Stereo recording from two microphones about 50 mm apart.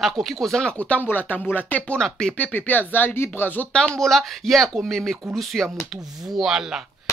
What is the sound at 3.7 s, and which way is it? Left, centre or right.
Speech, centre.